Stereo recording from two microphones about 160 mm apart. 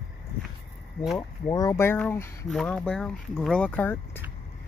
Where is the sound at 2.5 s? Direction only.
5° left (ahead or behind).